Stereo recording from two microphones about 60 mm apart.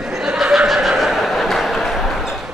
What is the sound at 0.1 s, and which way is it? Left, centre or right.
Neigh, centre.